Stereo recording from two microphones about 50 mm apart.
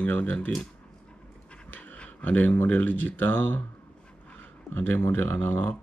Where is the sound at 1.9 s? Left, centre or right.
Left.